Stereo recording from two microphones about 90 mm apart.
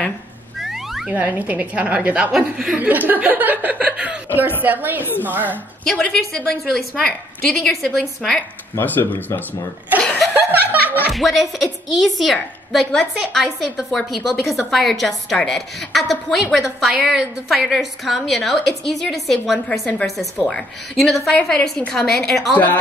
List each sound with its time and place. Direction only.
0.6 s a sound: 5° right (ahead or behind)
1.1 s a woman's voice: 15° right (ahead or behind)
2.3 s a woman's voice: 5° right (ahead or behind)
2.7 s a woman's voice: 20° right (ahead or behind)
5.9 s a woman's voice: 5° left (ahead or behind)
8.7 s speech: 20° left (ahead or behind)
10.3 s chuckle: 20° right (ahead or behind)
11.1 s a woman's voice: centre (ahead or behind)